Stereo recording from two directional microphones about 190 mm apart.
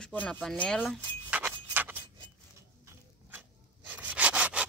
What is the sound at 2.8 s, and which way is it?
Rub, 10° right (ahead or behind).